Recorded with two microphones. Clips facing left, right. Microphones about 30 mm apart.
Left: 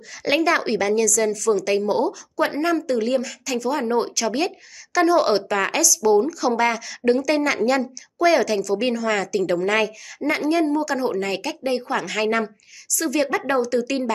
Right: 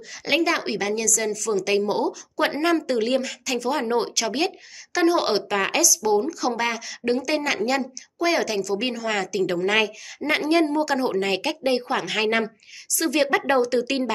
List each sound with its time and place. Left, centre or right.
0.2 s a woman's voice: centre
1.7 s speech: centre
2.3 s speech: right; by 9.9 s centre
10.2 s speech: centre
10.6 s speech: right
11.9 s speech: right